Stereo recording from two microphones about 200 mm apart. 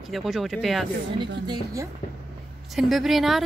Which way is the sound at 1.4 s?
20° right (ahead or behind).